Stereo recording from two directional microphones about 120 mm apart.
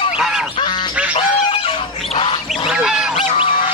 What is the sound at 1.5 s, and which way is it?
Bird, 50° left (ahead or behind).